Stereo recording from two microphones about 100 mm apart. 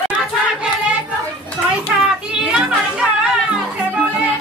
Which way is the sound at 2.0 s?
10° right (ahead or behind).